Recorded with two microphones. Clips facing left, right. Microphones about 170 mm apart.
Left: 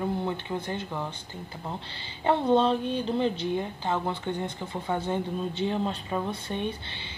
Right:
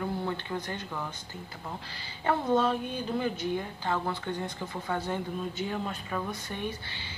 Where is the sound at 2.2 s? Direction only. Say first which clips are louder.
Left 4 dB; 30° left (ahead or behind).